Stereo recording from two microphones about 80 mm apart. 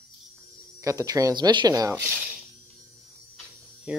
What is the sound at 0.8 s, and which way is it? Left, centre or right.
Speech, right.